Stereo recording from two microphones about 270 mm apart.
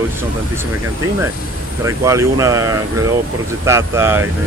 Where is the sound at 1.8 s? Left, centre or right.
Centre.